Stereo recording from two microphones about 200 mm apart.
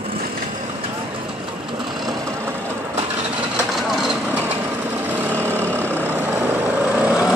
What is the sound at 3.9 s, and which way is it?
Vehicle, centre (ahead or behind).